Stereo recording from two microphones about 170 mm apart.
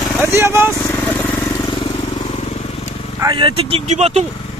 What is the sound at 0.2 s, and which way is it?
Speech, 15° right (ahead or behind).